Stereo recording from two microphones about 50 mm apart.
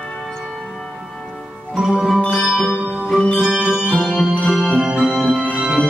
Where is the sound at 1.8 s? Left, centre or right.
Centre.